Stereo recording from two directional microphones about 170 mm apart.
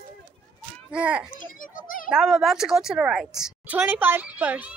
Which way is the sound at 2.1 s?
5° right (ahead or behind).